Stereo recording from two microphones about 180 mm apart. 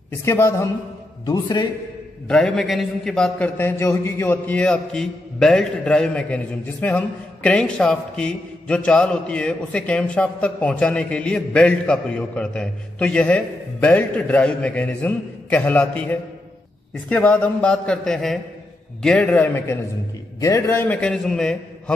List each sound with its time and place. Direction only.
0.2 s a man's voice: 15° left (ahead or behind)
2.2 s a man's voice: 5° left (ahead or behind)